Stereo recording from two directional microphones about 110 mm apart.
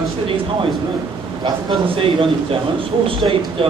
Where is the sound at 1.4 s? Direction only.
45° right (ahead or behind).